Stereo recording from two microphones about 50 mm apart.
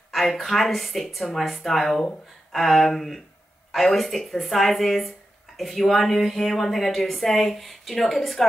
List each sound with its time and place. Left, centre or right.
0.1 s a woman's voice: centre